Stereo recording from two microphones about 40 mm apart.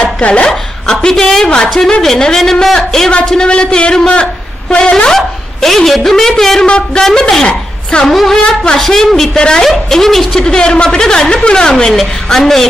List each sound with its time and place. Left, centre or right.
0.0 s a sound: left
0.5 s a woman's voice: centre
3.3 s a man's voice: left
4.9 s a man's voice: centre
6.6 s a sound: left
7.1 s a man's voice: centre
7.4 s a sound: left
8.1 s a man's voice: centre
10.4 s a man's voice: left
11.9 s a man's voice: centre